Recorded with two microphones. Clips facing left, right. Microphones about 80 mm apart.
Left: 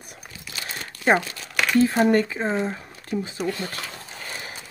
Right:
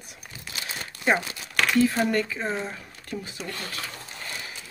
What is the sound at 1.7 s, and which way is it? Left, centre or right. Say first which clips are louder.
Speech: left 5 dB; left.